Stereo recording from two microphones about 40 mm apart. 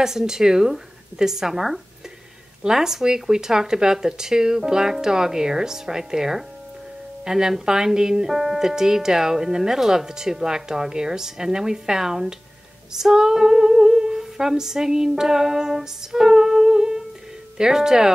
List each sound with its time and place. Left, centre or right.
0.0 s speech: centre
12.9 s humming: centre
17.6 s speech: centre